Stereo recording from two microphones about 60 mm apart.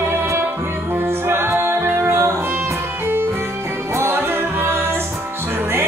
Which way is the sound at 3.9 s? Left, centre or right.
Right.